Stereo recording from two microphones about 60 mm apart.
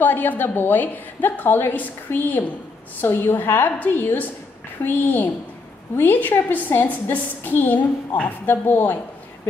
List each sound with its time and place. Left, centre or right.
0.0 s a woman's voice: left